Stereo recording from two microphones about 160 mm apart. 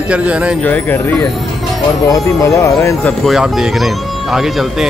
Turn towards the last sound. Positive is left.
turn(degrees=0)  # may be behind; listen again after turning